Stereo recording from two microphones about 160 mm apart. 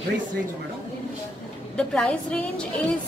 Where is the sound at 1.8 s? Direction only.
5° left (ahead or behind).